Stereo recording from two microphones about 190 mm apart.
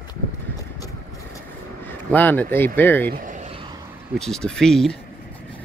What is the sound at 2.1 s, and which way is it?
Speech, 10° left (ahead or behind).